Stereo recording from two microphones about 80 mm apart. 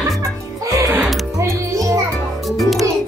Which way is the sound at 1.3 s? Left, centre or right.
Right.